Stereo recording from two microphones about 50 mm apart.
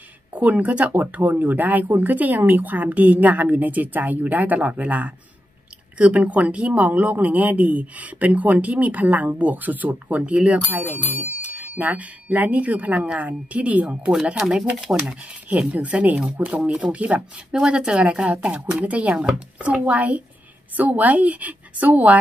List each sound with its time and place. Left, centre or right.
0.3 s speech: right
13.8 s speech: centre
15.7 s speech: right
17.5 s speech: centre
19.1 s speech: centre
19.7 s speech: right